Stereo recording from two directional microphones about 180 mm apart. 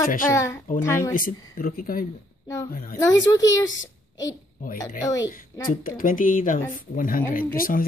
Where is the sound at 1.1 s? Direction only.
50° left (ahead or behind).